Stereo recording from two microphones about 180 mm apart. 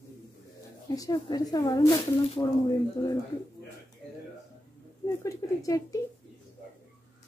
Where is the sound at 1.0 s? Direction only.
20° left (ahead or behind).